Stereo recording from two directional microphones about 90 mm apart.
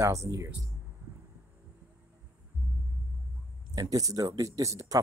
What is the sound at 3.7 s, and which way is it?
Speech, 40° right (ahead or behind).